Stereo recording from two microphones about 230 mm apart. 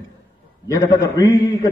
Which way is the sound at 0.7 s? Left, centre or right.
Centre.